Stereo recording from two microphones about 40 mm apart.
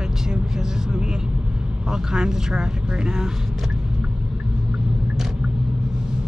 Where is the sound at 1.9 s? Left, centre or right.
Centre.